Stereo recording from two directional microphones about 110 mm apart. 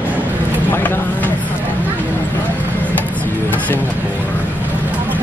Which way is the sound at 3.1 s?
15° left (ahead or behind).